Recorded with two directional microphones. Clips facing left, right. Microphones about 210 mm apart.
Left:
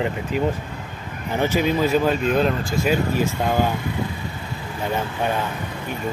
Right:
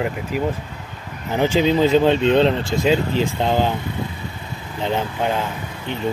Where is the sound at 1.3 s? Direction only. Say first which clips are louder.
Right 3 dB; 15° right (ahead or behind).